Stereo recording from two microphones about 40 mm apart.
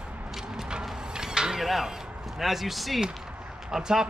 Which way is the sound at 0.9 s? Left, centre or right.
Centre.